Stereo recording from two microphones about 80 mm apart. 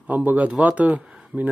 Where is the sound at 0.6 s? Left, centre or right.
Centre.